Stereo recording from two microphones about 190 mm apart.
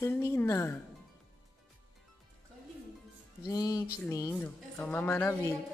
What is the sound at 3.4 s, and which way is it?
Music, 20° left (ahead or behind).